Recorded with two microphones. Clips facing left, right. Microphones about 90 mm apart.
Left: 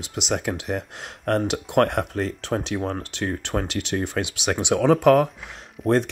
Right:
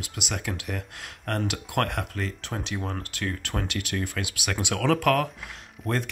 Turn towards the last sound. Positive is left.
turn(degrees=0)  # may be behind; listen again after turning